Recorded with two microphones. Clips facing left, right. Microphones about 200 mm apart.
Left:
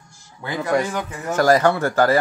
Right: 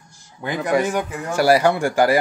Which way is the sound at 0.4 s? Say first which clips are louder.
Right 1 dB; 15° right (ahead or behind).